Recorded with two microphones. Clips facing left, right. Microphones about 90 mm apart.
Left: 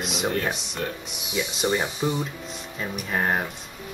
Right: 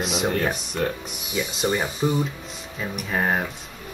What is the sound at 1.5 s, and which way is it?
Speech, centre (ahead or behind).